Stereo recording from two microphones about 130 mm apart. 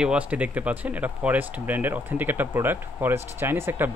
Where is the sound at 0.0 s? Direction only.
10° right (ahead or behind).